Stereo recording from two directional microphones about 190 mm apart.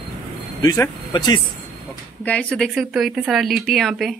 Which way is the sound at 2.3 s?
5° left (ahead or behind).